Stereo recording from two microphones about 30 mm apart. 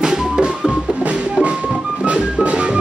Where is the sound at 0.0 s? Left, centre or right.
Right.